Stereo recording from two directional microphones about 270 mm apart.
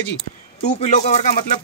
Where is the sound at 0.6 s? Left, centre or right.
Left.